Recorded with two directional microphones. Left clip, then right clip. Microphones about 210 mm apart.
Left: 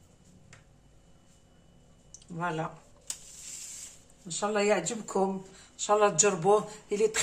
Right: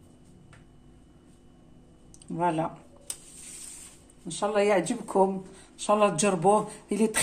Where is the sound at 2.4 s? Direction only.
45° right (ahead or behind).